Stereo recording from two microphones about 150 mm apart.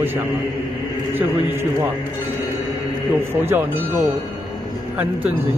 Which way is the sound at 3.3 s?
15° right (ahead or behind).